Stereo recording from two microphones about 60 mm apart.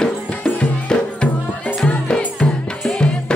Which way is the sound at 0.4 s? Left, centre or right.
Left.